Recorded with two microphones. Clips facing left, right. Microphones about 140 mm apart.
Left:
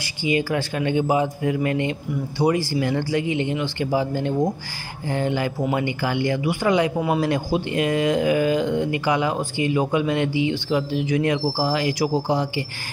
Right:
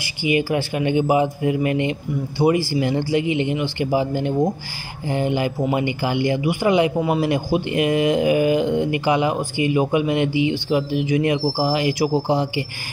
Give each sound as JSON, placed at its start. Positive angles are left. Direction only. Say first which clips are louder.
{"t": 0.2, "sound": "speech", "louder": "right 2 dB", "side_deg": -15}